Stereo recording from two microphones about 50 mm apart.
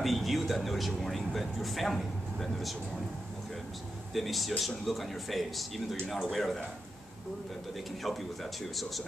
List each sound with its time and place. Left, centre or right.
0.0 s speech: centre
4.1 s speech: centre
8.0 s speech: centre